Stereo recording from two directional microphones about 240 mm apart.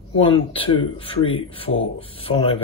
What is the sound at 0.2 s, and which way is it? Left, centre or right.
Speech, left.